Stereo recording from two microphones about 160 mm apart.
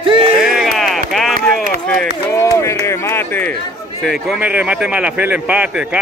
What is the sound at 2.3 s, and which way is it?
A man's voice, 20° left (ahead or behind).